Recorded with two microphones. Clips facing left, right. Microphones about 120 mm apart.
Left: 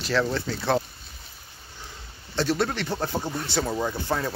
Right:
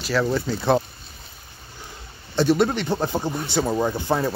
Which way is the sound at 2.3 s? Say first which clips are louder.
Right 6 dB; 15° right (ahead or behind).